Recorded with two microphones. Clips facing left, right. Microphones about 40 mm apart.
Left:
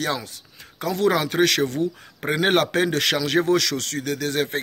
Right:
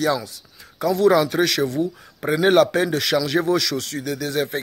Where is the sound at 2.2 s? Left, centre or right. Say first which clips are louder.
Right 4 dB; left.